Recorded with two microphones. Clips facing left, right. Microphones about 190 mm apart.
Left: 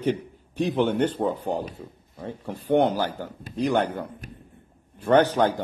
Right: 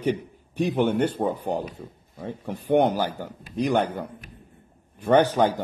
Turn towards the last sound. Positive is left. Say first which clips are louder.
# even
turn(degrees=-10)  # may be behind; listen again after turning